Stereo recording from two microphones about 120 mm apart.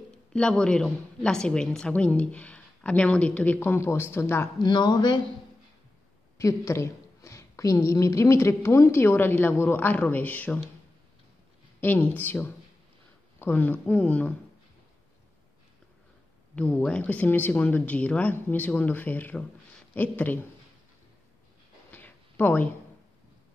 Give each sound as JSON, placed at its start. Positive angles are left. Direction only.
{"t": 0.1, "sound": "a woman's voice", "side_deg": 5}
{"t": 4.6, "sound": "speech", "side_deg": 40}
{"t": 6.3, "sound": "a woman's voice", "side_deg": 25}
{"t": 11.8, "sound": "a woman's voice", "side_deg": 15}
{"t": 16.5, "sound": "a woman's voice", "side_deg": 10}
{"t": 21.9, "sound": "a sound", "side_deg": 15}